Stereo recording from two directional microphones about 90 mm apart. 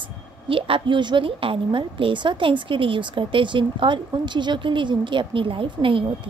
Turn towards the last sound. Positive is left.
turn(degrees=-75)  # may be behind; listen again after turning